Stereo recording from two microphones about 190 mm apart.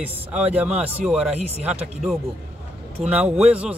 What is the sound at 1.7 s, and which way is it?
Speech, centre (ahead or behind).